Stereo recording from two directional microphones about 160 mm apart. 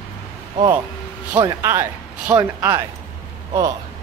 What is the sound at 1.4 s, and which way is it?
Speech, 15° right (ahead or behind).